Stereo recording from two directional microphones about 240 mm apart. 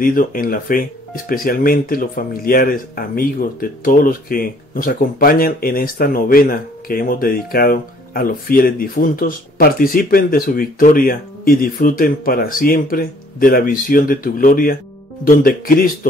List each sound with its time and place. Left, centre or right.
0.0 s speech: left